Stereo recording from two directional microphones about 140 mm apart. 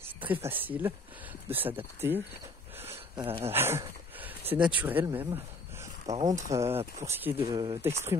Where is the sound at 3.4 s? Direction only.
15° right (ahead or behind).